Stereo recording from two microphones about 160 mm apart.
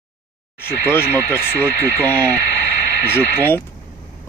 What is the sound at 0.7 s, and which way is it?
Speech, 15° left (ahead or behind).